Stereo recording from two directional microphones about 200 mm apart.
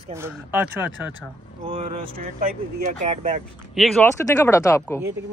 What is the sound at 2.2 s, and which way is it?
Speech, 45° right (ahead or behind).